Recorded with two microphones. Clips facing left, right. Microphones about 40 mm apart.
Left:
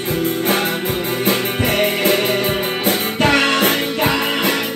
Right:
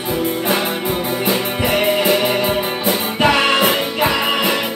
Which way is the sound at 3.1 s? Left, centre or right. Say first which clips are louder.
Right 1 dB; right.